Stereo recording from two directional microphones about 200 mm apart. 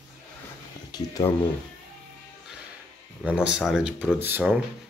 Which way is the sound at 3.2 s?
5° right (ahead or behind).